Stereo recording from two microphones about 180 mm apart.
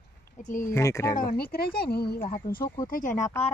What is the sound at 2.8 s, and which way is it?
Speech, 45° left (ahead or behind).